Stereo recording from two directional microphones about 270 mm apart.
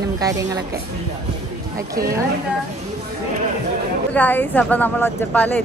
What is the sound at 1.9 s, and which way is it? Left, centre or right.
Speech, centre.